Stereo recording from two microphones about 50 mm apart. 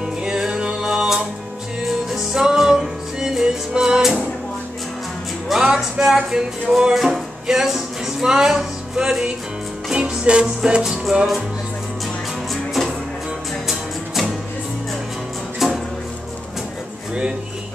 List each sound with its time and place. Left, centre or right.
0.0 s music: centre
5.6 s a sound: centre
9.8 s music: centre
13.7 s music: centre
15.6 s music: centre